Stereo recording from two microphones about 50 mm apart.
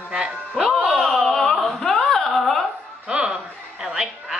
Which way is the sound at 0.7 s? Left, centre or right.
Centre.